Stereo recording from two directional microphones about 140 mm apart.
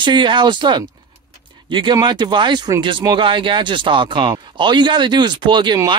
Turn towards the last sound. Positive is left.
turn(degrees=-35)  # may be behind; listen again after turning